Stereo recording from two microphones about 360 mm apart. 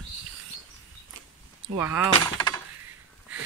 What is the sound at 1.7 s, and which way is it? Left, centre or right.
Speech, centre.